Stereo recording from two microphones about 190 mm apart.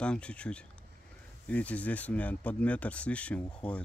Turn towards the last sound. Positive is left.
turn(degrees=5)  # may be behind; listen again after turning